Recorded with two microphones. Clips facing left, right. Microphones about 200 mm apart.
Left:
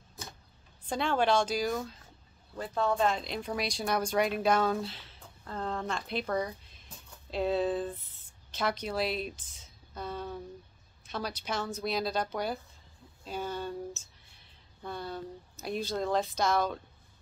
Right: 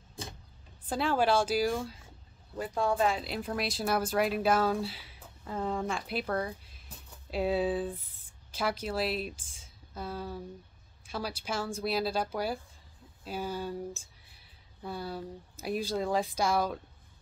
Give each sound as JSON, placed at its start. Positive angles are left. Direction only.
{"t": 0.8, "sound": "speech", "side_deg": -5}